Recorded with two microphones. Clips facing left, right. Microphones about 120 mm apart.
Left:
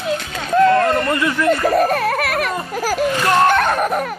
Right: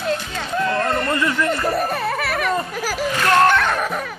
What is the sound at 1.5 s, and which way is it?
Speech, 70° left (ahead or behind).